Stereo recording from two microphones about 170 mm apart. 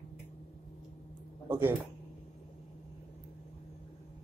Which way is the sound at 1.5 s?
15° right (ahead or behind).